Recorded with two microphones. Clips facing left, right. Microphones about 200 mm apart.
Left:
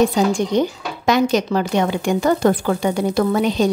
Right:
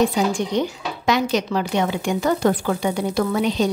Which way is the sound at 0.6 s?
45° left (ahead or behind).